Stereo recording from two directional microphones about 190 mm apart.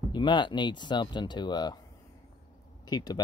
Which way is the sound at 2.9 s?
20° left (ahead or behind).